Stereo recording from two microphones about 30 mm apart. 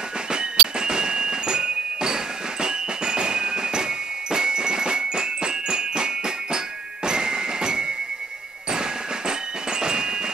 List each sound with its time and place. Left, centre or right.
0.3 s music: right
7.1 s a sound: right
9.7 s music: right